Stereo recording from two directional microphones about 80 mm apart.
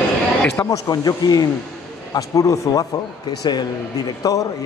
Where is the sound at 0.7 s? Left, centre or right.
Left.